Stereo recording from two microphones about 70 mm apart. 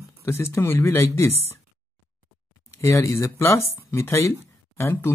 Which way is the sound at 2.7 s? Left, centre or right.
Left.